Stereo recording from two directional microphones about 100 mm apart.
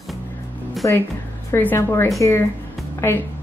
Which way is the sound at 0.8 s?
30° left (ahead or behind).